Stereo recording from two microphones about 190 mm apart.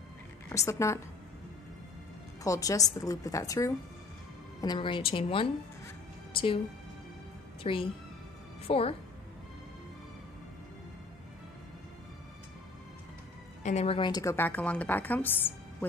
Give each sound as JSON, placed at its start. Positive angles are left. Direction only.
{"t": 0.5, "sound": "a woman's voice", "side_deg": 15}
{"t": 2.4, "sound": "a woman's voice", "side_deg": 15}
{"t": 7.6, "sound": "a woman's voice", "side_deg": 25}
{"t": 13.6, "sound": "a woman's voice", "side_deg": 35}